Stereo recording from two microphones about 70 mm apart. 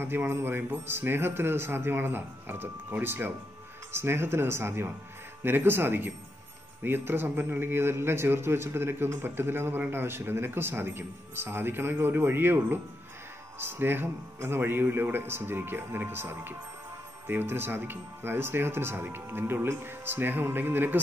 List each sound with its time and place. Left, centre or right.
0.0 s a man's voice: right